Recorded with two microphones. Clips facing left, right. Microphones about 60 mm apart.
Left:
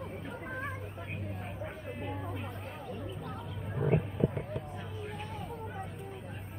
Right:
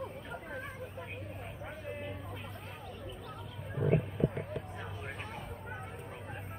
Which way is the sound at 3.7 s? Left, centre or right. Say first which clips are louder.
Even; centre.